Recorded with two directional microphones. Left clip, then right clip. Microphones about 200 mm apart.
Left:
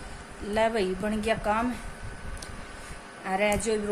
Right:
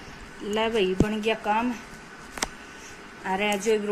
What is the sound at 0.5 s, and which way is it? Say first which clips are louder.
A woman's voice: right 2 dB; 5° left (ahead or behind).